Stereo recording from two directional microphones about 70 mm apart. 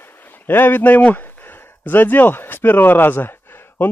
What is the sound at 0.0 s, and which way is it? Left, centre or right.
Speech, left.